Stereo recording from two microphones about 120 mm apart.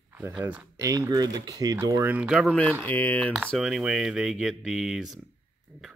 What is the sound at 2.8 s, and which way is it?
Speech, 15° left (ahead or behind).